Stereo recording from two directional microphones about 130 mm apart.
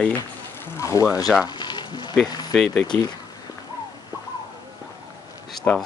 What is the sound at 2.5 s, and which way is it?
Speech, 5° left (ahead or behind).